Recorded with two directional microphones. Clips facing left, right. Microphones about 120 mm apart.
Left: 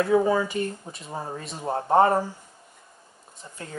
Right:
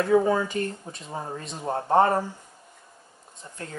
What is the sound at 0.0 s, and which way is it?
Speech, 5° left (ahead or behind).